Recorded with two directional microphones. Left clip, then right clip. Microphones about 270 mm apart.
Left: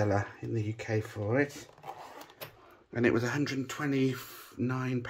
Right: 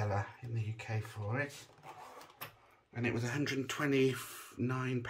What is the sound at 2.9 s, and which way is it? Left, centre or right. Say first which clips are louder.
Speech: left 9 dB; centre.